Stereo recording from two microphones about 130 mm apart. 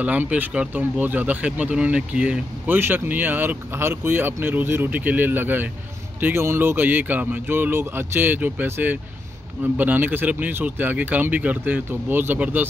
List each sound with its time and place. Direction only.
0.0 s speech: 10° right (ahead or behind)